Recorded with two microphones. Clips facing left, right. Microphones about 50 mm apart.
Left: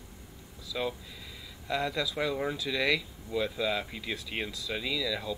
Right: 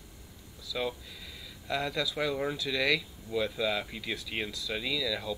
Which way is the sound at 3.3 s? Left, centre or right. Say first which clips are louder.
Even; centre.